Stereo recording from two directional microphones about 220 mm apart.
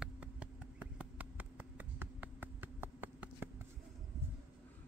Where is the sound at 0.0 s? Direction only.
5° right (ahead or behind).